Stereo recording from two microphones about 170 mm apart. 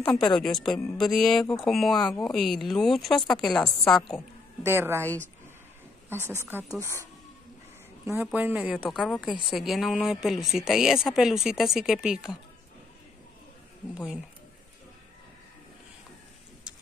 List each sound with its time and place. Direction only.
0.4 s speech: 5° left (ahead or behind)
4.6 s speech: 15° right (ahead or behind)
6.1 s speech: 15° right (ahead or behind)
8.0 s speech: 15° right (ahead or behind)
13.9 s speech: 5° right (ahead or behind)